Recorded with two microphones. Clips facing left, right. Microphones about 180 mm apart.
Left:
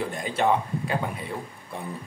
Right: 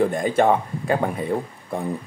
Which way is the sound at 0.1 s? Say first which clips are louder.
Right 6 dB; 50° right (ahead or behind).